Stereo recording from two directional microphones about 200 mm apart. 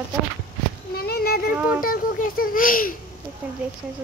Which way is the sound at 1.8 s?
45° left (ahead or behind).